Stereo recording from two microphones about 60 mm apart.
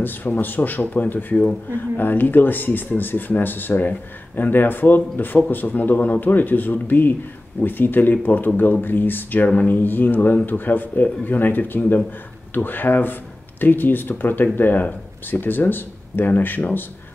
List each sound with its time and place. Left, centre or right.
0.0 s speech: left